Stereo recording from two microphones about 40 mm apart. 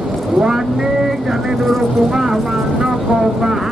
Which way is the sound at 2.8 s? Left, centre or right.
Centre.